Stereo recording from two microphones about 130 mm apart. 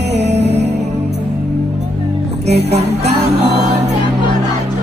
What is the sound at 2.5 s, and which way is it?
Music, 60° right (ahead or behind).